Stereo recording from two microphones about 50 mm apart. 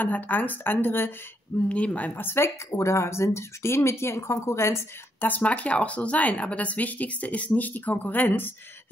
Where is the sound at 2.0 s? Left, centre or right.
Left.